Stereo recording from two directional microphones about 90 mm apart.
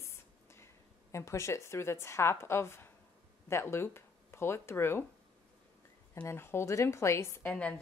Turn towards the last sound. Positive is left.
turn(degrees=15)  # may be behind; listen again after turning